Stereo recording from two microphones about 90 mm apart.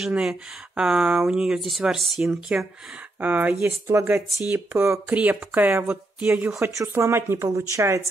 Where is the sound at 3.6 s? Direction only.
30° right (ahead or behind); by 6.5 s 15° right (ahead or behind).